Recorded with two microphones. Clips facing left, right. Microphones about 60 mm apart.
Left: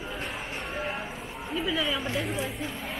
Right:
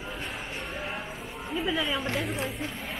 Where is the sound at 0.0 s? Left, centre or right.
Centre.